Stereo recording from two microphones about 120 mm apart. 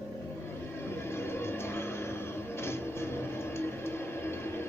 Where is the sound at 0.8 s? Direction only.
20° left (ahead or behind).